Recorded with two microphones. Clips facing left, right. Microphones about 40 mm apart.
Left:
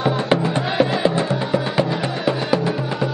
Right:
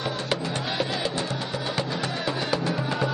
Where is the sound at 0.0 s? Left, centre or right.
Left.